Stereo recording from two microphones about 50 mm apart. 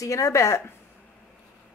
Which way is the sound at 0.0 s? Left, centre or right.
Left.